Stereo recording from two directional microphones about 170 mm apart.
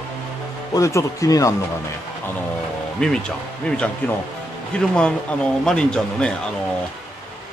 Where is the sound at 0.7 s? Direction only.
20° left (ahead or behind).